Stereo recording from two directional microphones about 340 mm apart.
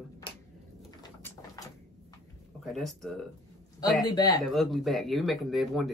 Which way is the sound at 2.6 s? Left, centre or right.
Centre.